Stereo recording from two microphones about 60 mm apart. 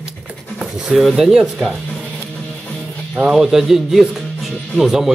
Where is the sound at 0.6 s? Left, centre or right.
Centre.